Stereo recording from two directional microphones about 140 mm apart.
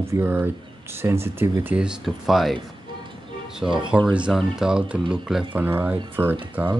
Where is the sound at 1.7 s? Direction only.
5° right (ahead or behind).